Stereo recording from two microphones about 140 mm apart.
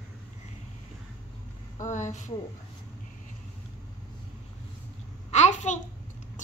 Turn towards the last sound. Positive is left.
turn(degrees=55)  # may be behind; listen again after turning